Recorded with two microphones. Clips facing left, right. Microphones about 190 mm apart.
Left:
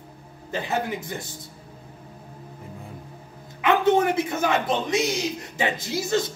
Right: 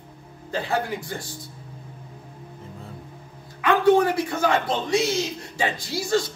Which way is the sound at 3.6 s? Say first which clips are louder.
Right 2 dB; 20° left (ahead or behind).